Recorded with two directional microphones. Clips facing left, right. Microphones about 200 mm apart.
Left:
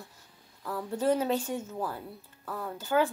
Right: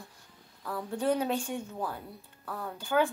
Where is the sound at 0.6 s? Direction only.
5° left (ahead or behind).